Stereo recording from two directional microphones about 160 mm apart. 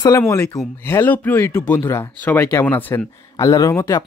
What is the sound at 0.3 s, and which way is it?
Speech, 15° left (ahead or behind).